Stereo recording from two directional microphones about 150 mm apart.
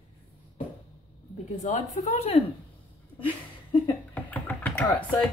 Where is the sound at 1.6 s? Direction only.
50° left (ahead or behind).